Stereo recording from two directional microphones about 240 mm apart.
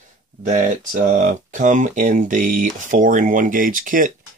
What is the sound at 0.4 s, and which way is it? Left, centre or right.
Speech, right.